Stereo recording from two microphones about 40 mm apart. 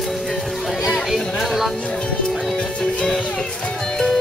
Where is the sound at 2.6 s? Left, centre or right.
Centre.